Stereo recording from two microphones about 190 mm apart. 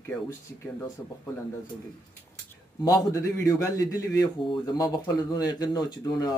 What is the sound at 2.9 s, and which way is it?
A man's voice, 20° left (ahead or behind).